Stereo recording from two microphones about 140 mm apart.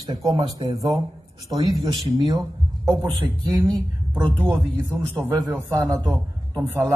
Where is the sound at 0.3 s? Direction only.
30° right (ahead or behind).